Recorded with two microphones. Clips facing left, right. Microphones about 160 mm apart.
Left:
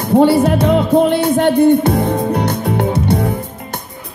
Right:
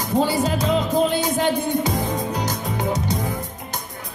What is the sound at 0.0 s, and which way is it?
Music, 60° left (ahead or behind).